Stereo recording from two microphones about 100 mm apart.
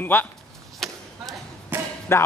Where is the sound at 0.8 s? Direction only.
5° left (ahead or behind).